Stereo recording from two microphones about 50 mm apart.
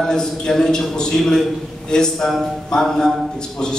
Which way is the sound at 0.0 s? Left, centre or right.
Centre.